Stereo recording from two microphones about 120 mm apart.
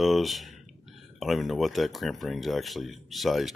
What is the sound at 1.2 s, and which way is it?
Speech, centre (ahead or behind).